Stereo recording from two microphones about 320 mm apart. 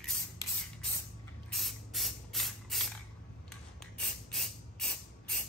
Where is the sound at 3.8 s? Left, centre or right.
Centre.